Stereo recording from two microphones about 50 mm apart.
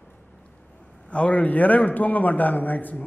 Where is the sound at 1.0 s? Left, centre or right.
Left.